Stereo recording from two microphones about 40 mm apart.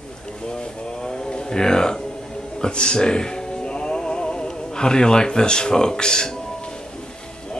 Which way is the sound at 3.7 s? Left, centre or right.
Left.